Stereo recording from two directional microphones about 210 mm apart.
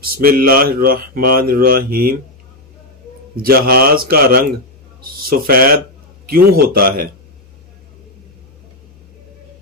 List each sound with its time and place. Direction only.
0.0 s speech: 45° right (ahead or behind)
3.4 s speech: 45° right (ahead or behind)